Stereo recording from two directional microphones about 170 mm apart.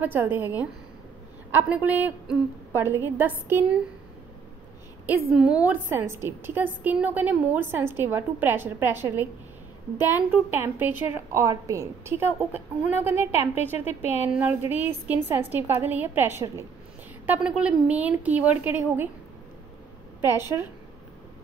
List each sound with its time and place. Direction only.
0.0 s a woman's voice: 10° right (ahead or behind)
5.0 s a woman's voice: 5° right (ahead or behind)
13.7 s speech: 40° left (ahead or behind)
14.3 s a woman's voice: 10° right (ahead or behind)
20.2 s a woman's voice: 15° right (ahead or behind)